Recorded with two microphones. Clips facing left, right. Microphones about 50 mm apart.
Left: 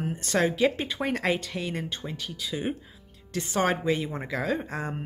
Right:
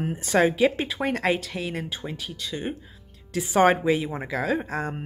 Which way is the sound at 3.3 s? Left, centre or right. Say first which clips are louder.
Right 5 dB; centre.